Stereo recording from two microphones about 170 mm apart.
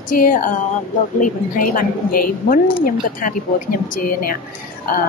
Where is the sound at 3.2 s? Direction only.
55° left (ahead or behind).